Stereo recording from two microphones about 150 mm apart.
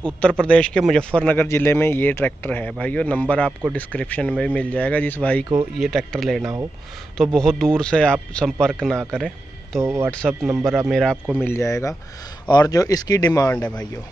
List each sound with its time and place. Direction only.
0.4 s a man's voice: 5° left (ahead or behind)
9.8 s a man's voice: 20° right (ahead or behind)
10.1 s speech: 5° left (ahead or behind)
11.3 s a man's voice: 15° left (ahead or behind)
13.5 s a man's voice: 10° left (ahead or behind)